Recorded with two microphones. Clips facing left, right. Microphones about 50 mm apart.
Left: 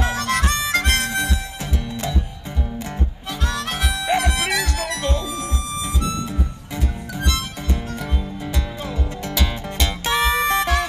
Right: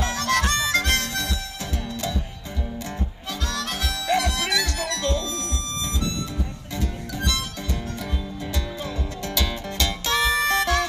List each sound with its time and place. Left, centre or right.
0.0 s harmonica: left
3.4 s harmonica: left
7.2 s music: left
8.8 s music: left